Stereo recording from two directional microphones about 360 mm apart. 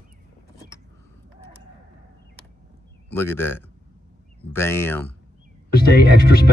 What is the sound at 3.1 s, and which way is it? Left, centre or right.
A man's voice, centre.